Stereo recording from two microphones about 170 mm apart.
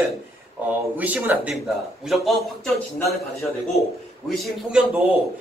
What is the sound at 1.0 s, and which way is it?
Speech, 10° right (ahead or behind).